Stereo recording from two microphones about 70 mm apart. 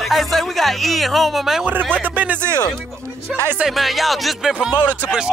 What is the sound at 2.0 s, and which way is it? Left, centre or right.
Music, right.